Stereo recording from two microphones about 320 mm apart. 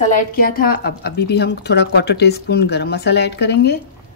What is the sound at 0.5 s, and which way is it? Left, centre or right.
Speech, left.